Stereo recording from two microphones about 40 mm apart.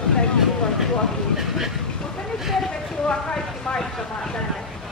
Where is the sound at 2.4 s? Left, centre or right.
Centre.